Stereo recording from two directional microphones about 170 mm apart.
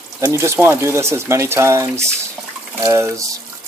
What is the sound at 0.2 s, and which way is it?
Speech, 15° right (ahead or behind).